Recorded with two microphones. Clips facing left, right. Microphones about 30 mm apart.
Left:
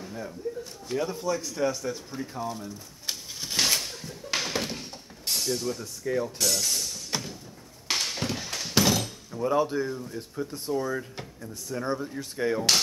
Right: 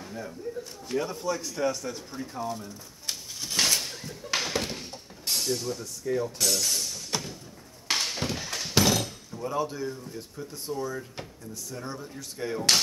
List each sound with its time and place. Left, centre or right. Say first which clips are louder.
0.0 s a sound: left 1 dB; centre
0.8 s speech: left 1 dB; centre
4.0 s a sound: even; centre
6.0 s mechanisms: even; centre
6.4 s music: even; centre
7.9 s thunk: even; centre
9.3 s speech: left 6 dB; left
10.3 s speech: left 5 dB; left